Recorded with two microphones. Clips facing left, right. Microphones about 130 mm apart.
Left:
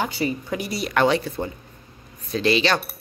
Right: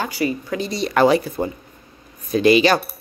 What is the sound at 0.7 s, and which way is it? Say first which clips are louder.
Speech: right 4 dB; 5° left (ahead or behind).